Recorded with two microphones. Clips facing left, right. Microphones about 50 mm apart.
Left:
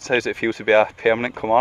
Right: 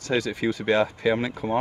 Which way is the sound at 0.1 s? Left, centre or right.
Left.